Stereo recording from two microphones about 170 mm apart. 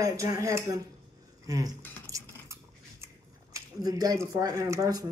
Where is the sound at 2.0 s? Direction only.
20° right (ahead or behind).